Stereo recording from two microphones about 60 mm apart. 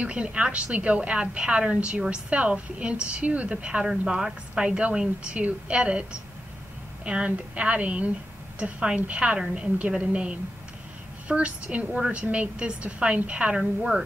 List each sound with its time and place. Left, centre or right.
0.0 s a woman's voice: centre
7.1 s a woman's voice: centre